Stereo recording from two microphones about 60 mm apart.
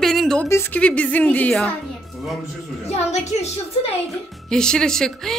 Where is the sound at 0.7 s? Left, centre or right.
Left.